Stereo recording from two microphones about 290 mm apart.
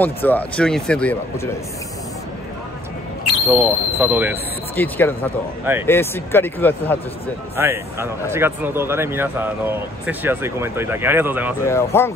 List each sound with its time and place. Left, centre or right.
0.0 s speech: centre
3.4 s speech: centre
4.7 s speech: centre
7.5 s speech: centre
11.6 s speech: centre